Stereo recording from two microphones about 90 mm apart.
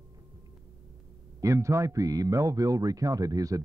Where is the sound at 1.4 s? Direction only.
35° right (ahead or behind).